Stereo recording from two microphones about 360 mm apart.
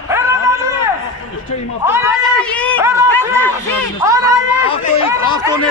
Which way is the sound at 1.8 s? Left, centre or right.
Centre.